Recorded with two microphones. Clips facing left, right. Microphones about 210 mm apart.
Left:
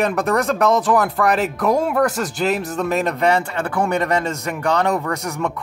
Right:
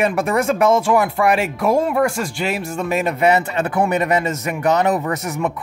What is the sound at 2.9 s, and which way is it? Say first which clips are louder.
Speech: right 2 dB; 10° right (ahead or behind).